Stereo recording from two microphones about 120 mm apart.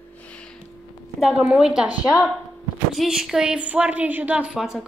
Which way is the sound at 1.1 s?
5° right (ahead or behind).